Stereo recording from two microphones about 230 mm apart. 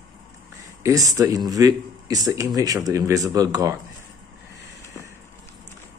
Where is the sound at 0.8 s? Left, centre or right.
Centre.